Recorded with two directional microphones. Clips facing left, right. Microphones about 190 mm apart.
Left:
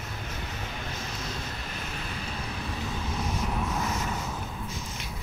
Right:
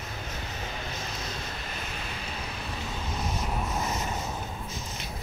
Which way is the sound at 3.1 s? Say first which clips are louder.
Even; 20° right (ahead or behind).